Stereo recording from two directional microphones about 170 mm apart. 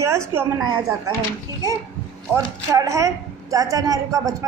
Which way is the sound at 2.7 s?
20° right (ahead or behind).